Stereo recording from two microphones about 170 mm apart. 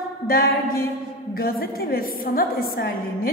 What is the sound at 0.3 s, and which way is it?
A woman's voice, 60° left (ahead or behind).